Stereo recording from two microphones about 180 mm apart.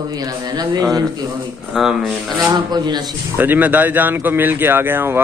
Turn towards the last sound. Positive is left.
turn(degrees=-10)  # may be behind; listen again after turning